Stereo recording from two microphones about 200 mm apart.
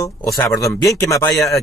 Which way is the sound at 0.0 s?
15° left (ahead or behind).